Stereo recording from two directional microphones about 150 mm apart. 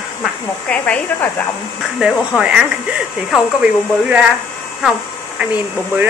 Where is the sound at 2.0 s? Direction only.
5° right (ahead or behind).